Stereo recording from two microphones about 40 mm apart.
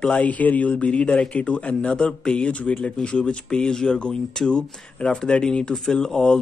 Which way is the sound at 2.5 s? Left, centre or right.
Left.